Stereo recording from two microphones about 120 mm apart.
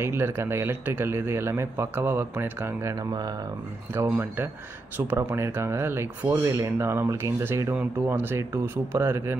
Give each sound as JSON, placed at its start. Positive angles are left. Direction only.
{"t": 0.0, "sound": "a man's voice", "side_deg": -20}
{"t": 3.9, "sound": "a man's voice", "side_deg": -20}